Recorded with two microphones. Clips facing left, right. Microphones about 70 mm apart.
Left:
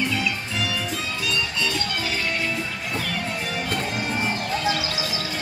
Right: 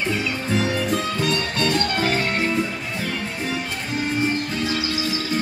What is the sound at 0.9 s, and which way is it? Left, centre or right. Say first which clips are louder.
Music: right 5 dB; right.